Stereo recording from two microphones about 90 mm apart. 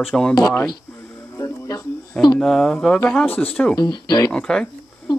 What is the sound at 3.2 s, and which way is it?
Speech, 20° left (ahead or behind).